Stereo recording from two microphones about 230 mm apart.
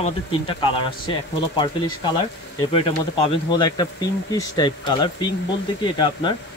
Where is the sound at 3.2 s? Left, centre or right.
Centre.